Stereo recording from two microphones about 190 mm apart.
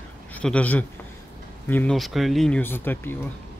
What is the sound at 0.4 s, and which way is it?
Speech, 5° left (ahead or behind).